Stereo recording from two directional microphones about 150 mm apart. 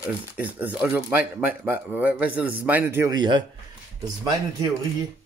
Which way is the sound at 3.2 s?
30° right (ahead or behind).